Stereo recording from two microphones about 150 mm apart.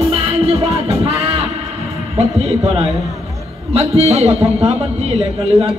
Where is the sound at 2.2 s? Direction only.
45° right (ahead or behind).